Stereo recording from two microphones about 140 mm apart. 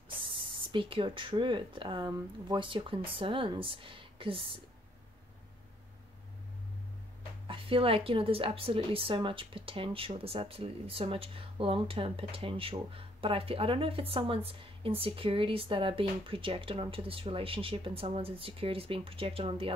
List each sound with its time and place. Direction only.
0.2 s a woman's voice: 40° right (ahead or behind)
7.4 s a woman's voice: 40° right (ahead or behind)